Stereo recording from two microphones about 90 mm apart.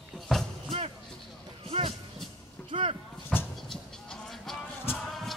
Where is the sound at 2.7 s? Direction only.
80° right.